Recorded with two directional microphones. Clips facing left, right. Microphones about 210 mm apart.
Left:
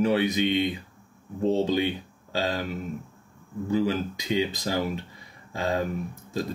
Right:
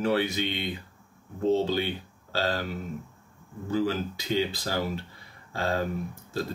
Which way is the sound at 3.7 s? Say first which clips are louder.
Left 2 dB; 15° left (ahead or behind).